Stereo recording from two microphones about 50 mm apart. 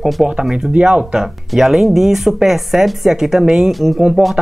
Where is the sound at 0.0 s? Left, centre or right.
Centre.